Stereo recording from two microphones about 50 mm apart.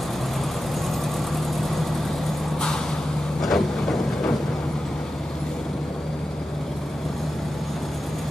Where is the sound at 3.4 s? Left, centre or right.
Centre.